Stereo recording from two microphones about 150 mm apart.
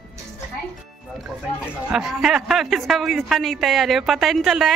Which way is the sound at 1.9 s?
Centre (ahead or behind).